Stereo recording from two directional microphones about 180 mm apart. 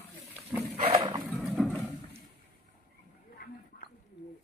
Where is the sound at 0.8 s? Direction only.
30° right (ahead or behind).